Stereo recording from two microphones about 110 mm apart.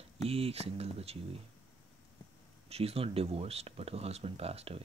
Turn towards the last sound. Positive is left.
turn(degrees=-65)  # may be behind; listen again after turning